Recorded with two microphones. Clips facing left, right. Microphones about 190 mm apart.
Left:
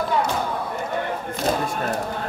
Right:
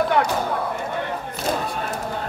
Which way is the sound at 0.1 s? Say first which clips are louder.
Even; 65° right (ahead or behind).